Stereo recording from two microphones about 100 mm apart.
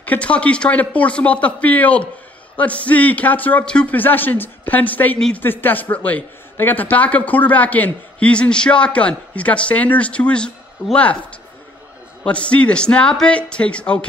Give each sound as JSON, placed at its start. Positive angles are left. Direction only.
{"t": 0.0, "sound": "a man's voice", "side_deg": 15}
{"t": 12.2, "sound": "a man's voice", "side_deg": 10}